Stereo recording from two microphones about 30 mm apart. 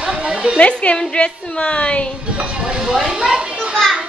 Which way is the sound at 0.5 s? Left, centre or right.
Left.